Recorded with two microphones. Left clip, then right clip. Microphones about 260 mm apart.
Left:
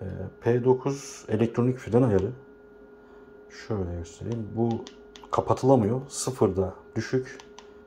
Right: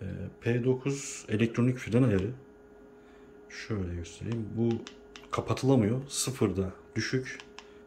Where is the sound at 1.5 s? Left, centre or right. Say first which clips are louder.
Left 5 dB; centre.